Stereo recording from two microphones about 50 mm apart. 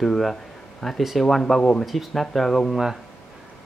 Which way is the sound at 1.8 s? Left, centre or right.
Centre.